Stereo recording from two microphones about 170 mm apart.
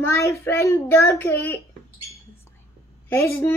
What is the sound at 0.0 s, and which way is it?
A child's voice, 15° left (ahead or behind).